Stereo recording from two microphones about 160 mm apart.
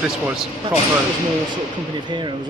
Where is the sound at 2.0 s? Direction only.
30° right (ahead or behind).